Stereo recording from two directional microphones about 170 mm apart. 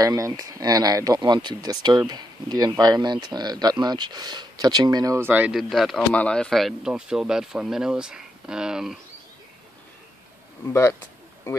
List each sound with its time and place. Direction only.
0.0 s speech: 20° right (ahead or behind); by 8.9 s 5° right (ahead or behind)
10.7 s speech: 15° left (ahead or behind)